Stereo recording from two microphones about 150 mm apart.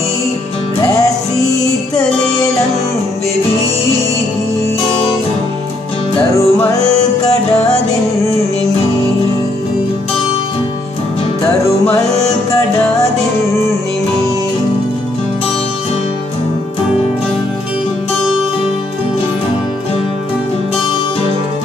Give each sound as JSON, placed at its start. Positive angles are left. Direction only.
{"t": 6.3, "sound": "music", "side_deg": 20}